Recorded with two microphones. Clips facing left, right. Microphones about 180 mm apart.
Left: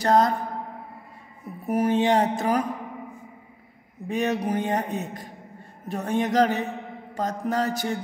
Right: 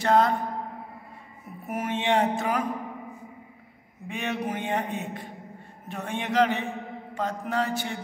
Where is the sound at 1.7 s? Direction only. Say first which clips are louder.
Left 5 dB; 35° left (ahead or behind).